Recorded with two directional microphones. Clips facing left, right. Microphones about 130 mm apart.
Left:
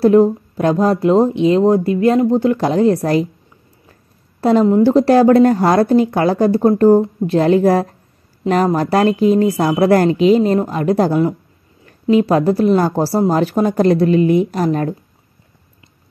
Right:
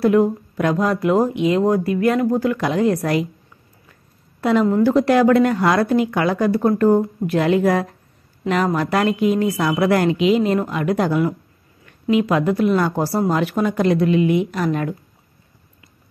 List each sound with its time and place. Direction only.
0.0 s speech: 30° left (ahead or behind)